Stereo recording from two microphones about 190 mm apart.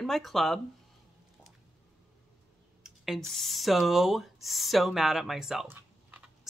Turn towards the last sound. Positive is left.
turn(degrees=-5)  # may be behind; listen again after turning